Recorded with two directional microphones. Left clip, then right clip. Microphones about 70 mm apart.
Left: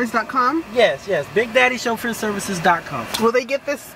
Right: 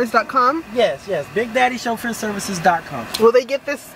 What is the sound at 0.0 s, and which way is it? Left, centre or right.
Speech, right.